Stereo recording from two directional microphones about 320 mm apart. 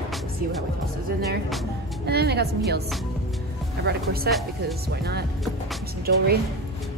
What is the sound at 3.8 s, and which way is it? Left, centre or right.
Speech, right.